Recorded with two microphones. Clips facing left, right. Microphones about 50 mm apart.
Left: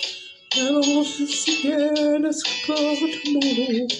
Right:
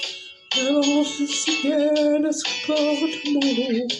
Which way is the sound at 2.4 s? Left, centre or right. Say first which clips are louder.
Right 1 dB; centre.